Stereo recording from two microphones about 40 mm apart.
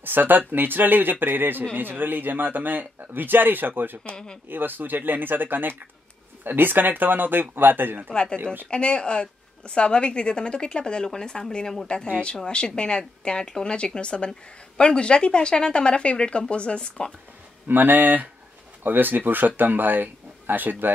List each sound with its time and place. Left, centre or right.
0.0 s speech: right
8.1 s a woman's voice: left
12.4 s a woman's voice: left
17.6 s speech: right